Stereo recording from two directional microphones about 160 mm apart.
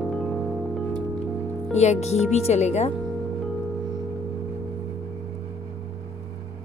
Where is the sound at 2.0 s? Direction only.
45° left (ahead or behind).